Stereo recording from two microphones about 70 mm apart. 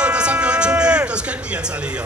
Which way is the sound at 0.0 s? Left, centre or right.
Centre.